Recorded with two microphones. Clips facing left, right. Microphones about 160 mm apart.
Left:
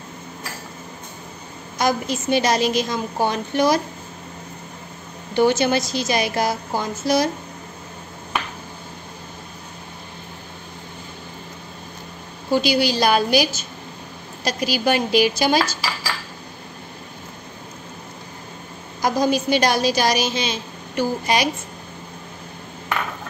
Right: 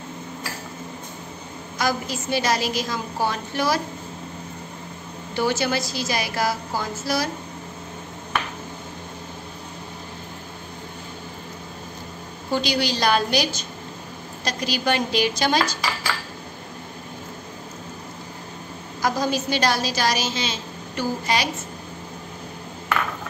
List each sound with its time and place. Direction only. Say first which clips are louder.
1.8 s a woman's voice: left 4 dB; 20° left (ahead or behind)
5.3 s a woman's voice: left 6 dB; 20° left (ahead or behind)
12.4 s a woman's voice: left 5 dB; 10° left (ahead or behind)
18.9 s a woman's voice: left 4 dB; 15° left (ahead or behind)